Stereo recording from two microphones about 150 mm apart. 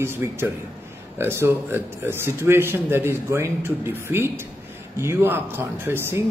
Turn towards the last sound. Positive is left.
turn(degrees=-15)  # may be behind; listen again after turning